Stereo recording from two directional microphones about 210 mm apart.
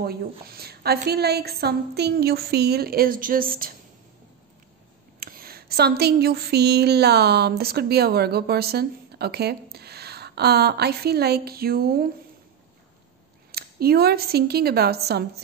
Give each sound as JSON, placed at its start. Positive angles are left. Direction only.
{"t": 0.0, "sound": "a woman's voice", "side_deg": -45}
{"t": 5.2, "sound": "speech", "side_deg": -45}
{"t": 13.5, "sound": "speech", "side_deg": -45}